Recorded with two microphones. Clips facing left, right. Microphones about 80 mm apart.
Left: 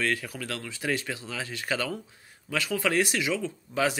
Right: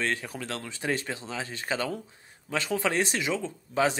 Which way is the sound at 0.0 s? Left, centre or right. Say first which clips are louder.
Left 1 dB; right.